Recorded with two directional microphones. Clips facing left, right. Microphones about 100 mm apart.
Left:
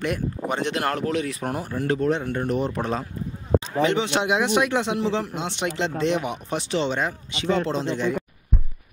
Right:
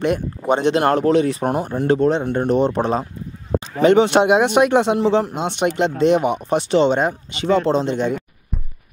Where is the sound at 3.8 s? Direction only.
50° right (ahead or behind).